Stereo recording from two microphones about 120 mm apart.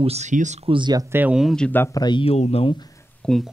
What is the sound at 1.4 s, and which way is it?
Speech, 5° left (ahead or behind).